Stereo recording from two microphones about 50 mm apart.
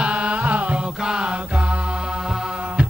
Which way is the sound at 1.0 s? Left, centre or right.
Centre.